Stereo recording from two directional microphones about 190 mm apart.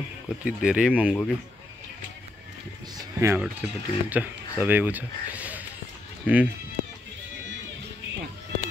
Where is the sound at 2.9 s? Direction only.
15° right (ahead or behind).